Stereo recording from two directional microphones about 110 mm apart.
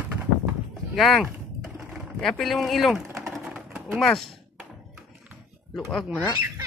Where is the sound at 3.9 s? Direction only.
5° left (ahead or behind).